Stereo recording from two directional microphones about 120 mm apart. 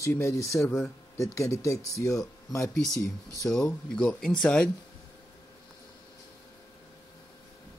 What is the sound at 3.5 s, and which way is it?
Mantra, 5° left (ahead or behind).